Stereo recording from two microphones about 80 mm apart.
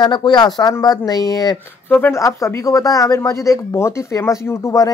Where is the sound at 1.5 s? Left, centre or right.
Left.